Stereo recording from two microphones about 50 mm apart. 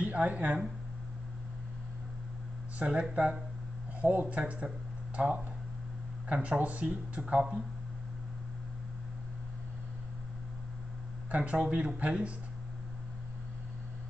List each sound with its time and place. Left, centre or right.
0.0 s speech: right
2.8 s speech: right
4.0 s speech: right
11.3 s speech: right